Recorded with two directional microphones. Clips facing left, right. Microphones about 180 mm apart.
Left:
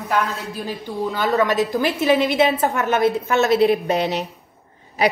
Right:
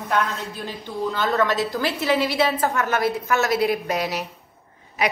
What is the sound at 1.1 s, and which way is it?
A woman's voice, 15° left (ahead or behind).